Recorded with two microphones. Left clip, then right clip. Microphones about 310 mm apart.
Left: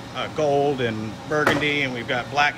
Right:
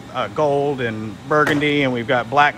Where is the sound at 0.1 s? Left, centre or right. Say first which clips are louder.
Right 3 dB; centre.